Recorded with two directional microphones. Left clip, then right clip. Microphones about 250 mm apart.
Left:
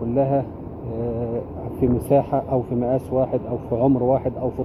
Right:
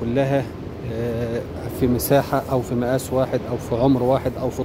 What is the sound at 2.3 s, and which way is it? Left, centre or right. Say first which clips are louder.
Speech: even; right.